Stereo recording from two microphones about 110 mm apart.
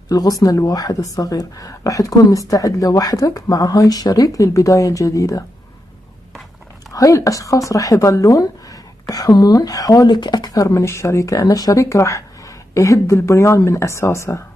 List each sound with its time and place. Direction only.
0.1 s a woman's voice: 35° left (ahead or behind)
6.9 s a woman's voice: 30° left (ahead or behind)